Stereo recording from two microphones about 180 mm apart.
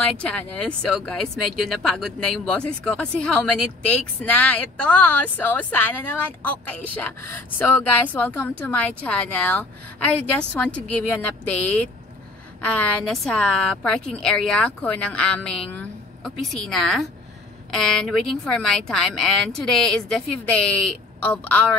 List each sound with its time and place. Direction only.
0.0 s a woman's voice: 5° left (ahead or behind)